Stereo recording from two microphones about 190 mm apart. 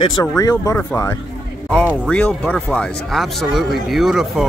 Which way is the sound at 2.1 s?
10° left (ahead or behind).